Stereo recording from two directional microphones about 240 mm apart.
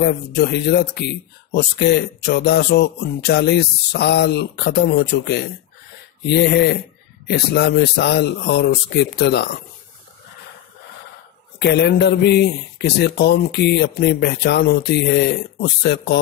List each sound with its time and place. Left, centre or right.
0.0 s speech: left
11.6 s speech: left